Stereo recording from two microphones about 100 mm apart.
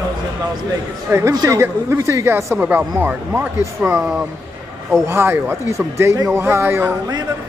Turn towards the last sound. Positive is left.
turn(degrees=-25)  # may be behind; listen again after turning